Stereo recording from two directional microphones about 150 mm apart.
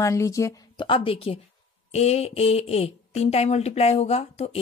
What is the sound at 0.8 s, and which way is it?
Speech, 35° left (ahead or behind).